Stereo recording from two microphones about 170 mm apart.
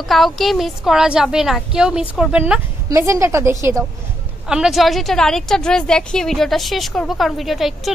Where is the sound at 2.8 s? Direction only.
15° right (ahead or behind).